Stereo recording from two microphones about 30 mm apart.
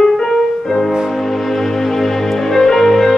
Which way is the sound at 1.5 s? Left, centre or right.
Centre.